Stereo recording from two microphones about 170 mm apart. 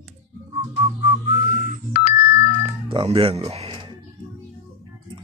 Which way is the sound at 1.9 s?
60° left (ahead or behind).